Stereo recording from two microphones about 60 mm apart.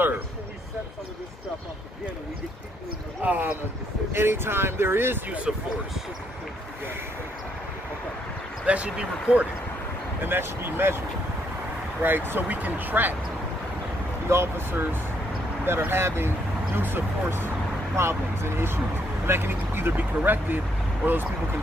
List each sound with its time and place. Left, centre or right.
3.2 s speech: right
4.1 s speech: right
8.6 s speech: centre
10.2 s speech: right
12.0 s speech: right
14.3 s speech: right